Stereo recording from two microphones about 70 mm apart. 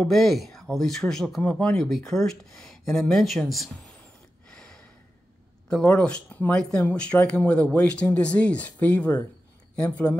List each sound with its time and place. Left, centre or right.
0.0 s speech: centre
4.5 s a sound: centre
5.7 s speech: centre